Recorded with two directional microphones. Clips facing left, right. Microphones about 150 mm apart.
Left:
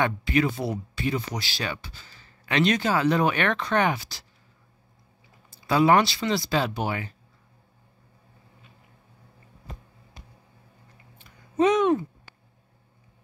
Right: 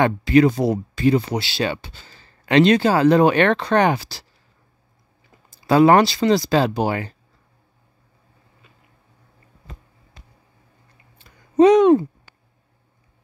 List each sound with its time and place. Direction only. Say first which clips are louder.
0.4 s speech: right 9 dB; 40° right (ahead or behind)
5.7 s speech: right 6 dB; 45° right (ahead or behind)
11.1 s a sound: right 9 dB; 35° right (ahead or behind)